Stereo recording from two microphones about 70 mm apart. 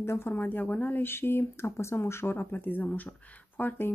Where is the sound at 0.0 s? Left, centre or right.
Left.